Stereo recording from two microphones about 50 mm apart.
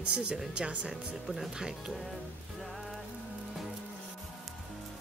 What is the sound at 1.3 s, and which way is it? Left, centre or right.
Speech, centre.